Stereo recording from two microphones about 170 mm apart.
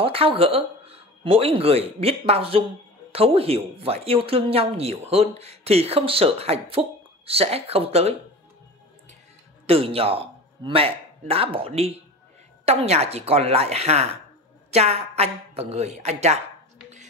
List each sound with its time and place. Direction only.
0.0 s speech: 35° right (ahead or behind)
9.7 s a man's voice: 35° right (ahead or behind)